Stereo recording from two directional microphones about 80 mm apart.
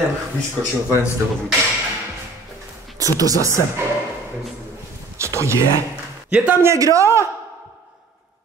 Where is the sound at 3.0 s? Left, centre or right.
Right.